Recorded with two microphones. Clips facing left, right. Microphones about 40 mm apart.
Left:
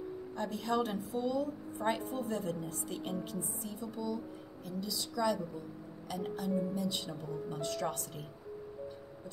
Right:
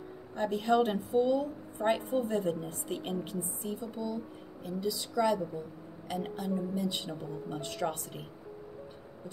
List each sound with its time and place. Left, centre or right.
0.4 s a woman's voice: right